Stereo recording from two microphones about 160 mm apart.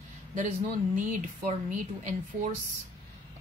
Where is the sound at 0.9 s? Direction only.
55° right (ahead or behind).